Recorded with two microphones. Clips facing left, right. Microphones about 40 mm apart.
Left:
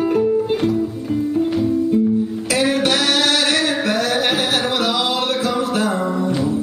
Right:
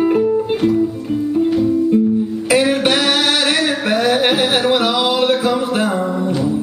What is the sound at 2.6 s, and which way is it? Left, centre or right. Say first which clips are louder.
Singing: left 1 dB; centre.